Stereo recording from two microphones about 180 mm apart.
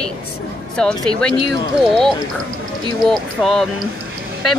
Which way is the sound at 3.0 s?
Centre (ahead or behind).